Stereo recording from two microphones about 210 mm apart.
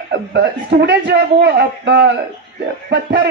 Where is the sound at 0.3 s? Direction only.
55° right (ahead or behind).